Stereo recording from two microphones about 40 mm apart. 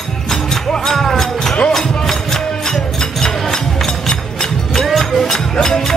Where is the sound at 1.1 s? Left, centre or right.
Centre.